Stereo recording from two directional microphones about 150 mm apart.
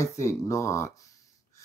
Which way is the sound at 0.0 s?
20° left (ahead or behind).